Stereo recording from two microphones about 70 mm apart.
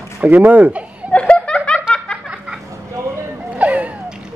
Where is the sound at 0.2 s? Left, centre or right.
Right.